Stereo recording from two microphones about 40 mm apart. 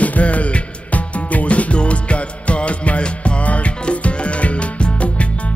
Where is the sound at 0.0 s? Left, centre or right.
Left.